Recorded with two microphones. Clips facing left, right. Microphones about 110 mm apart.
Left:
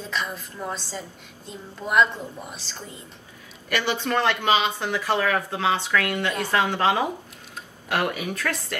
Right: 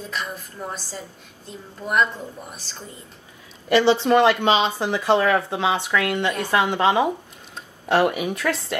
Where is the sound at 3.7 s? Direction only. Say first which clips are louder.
Right 9 dB; 30° right (ahead or behind).